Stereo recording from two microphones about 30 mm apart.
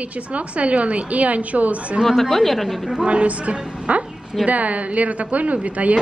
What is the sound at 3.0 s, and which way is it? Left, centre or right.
A woman's voice, right.